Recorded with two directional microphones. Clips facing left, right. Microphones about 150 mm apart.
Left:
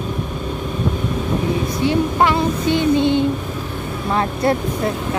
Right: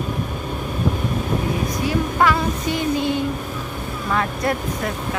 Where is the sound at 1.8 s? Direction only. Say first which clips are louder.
Left 3 dB; 25° left (ahead or behind).